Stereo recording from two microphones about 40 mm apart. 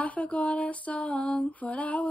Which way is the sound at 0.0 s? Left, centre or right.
Left.